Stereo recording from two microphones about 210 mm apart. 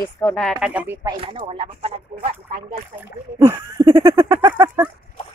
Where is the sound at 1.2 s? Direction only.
25° right (ahead or behind).